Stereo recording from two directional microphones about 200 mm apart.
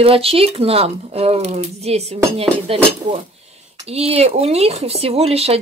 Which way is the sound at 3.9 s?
30° right (ahead or behind).